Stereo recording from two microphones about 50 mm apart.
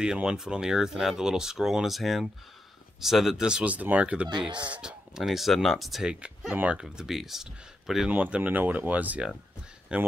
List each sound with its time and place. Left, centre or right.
0.0 s speech: centre
3.6 s speech: right
5.1 s speech: centre
6.7 s speech: centre
8.1 s speech: right
9.9 s speech: right